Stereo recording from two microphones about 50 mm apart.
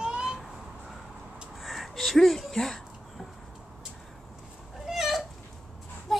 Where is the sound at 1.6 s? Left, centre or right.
Centre.